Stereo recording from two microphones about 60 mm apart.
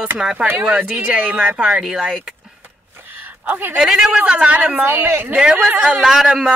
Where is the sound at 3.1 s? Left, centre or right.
Right.